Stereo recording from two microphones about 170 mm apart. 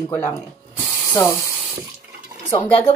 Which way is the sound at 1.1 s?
15° left (ahead or behind).